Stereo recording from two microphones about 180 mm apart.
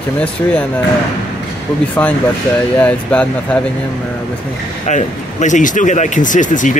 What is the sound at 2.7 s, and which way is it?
Speech, 10° left (ahead or behind).